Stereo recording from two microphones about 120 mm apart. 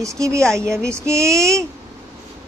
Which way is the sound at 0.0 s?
25° right (ahead or behind).